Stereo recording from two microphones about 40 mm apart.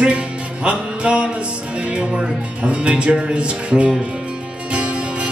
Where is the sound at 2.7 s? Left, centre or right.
Right.